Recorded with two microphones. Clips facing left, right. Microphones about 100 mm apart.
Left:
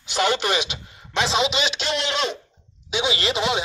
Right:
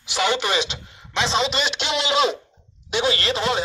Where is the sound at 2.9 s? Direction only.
10° left (ahead or behind).